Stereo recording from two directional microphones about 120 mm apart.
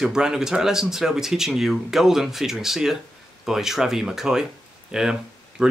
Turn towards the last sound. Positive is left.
turn(degrees=-10)  # may be behind; listen again after turning